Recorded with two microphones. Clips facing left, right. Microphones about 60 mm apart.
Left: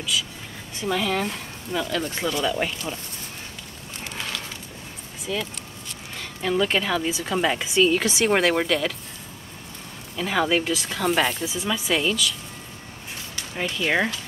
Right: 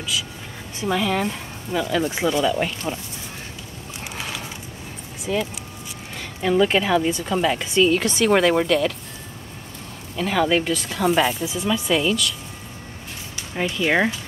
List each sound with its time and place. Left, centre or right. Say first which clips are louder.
0.7 s speech: right 2 dB; centre
4.1 s a sound: right 1 dB; centre
5.3 s speech: right 5 dB; right
6.1 s speech: right 4 dB; centre
7.1 s speech: right 2 dB; centre
10.1 s speech: right 2 dB; centre
13.6 s speech: right 3 dB; centre